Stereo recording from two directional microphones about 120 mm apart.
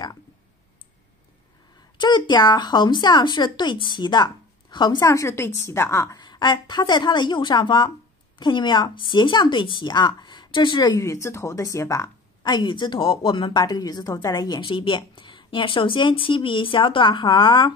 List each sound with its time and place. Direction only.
2.0 s a woman's voice: 40° left (ahead or behind)
6.1 s a woman's voice: 40° left (ahead or behind)
11.0 s a woman's voice: 25° left (ahead or behind); by 17.7 s 40° left (ahead or behind)